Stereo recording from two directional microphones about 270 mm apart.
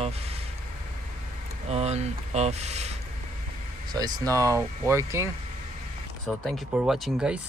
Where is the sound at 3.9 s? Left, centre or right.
Centre.